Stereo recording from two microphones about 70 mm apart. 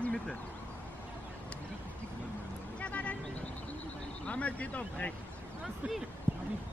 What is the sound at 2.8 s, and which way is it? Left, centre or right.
Vehicle, left.